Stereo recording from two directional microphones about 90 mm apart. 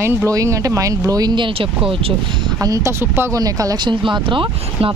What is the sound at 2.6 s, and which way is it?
Speech, 40° right (ahead or behind).